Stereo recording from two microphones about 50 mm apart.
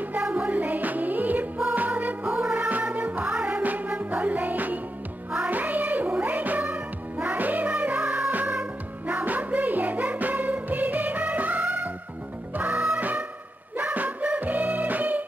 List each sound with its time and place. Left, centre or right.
0.0 s music: right